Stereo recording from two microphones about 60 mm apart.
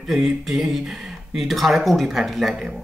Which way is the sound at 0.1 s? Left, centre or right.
Centre.